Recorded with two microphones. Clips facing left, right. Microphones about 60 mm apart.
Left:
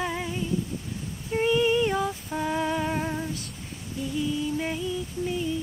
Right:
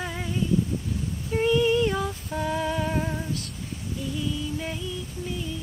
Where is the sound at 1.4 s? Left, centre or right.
Centre.